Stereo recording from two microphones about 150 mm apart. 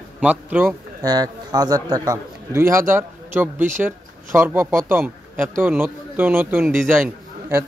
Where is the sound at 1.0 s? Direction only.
25° right (ahead or behind).